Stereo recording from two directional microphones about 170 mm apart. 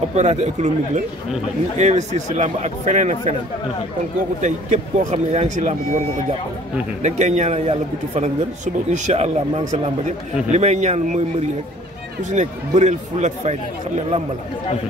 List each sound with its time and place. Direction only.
0.1 s speech: 40° right (ahead or behind)
4.4 s speech: 45° right (ahead or behind)